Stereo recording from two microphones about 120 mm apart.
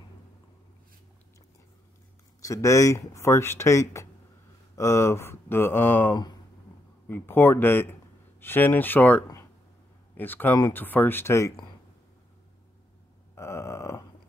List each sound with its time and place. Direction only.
2.4 s speech: 25° left (ahead or behind)
13.3 s grunt: 25° left (ahead or behind)